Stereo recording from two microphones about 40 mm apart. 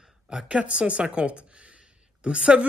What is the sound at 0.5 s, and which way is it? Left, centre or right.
A man's voice, right.